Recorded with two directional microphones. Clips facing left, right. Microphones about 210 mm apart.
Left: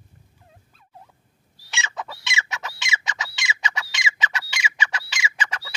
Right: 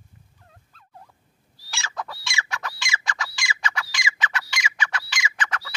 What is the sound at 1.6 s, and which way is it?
Chicken, centre (ahead or behind).